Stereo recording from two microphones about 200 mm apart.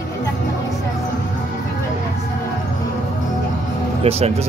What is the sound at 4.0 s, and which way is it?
Speech, 30° right (ahead or behind).